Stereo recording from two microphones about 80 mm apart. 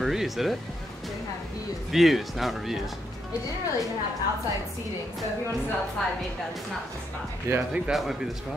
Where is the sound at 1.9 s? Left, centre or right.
Centre.